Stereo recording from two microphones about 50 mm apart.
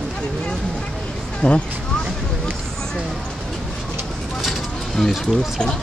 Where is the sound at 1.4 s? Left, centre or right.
Left.